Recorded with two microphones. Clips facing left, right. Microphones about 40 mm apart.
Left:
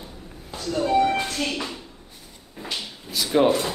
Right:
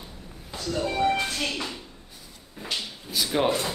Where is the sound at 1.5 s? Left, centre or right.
Centre.